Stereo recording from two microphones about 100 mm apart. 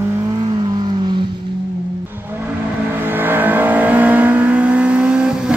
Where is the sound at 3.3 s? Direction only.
20° right (ahead or behind).